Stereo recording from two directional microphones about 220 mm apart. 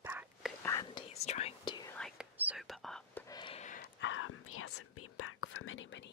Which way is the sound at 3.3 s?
25° left (ahead or behind).